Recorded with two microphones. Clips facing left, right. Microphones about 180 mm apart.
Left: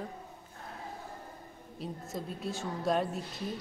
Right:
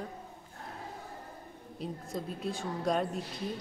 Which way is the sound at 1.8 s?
Centre (ahead or behind).